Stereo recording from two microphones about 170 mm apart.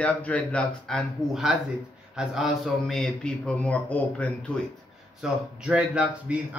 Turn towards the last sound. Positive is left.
turn(degrees=-5)  # may be behind; listen again after turning